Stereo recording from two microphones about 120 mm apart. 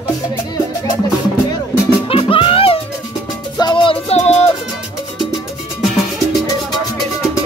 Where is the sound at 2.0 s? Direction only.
50° left (ahead or behind).